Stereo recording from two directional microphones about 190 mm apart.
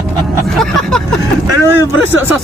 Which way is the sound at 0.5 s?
Centre (ahead or behind).